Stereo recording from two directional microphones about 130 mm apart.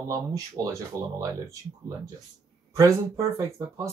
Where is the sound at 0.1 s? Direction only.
25° right (ahead or behind).